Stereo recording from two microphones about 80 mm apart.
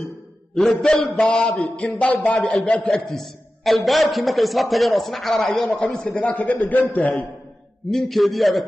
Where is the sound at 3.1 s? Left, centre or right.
Centre.